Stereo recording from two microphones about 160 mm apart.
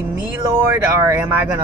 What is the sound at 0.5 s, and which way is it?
Speech, 15° right (ahead or behind).